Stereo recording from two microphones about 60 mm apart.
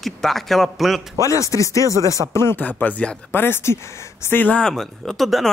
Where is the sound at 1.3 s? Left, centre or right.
Left.